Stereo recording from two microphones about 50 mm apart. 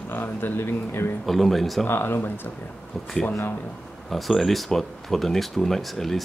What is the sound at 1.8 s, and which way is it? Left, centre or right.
Speech, left.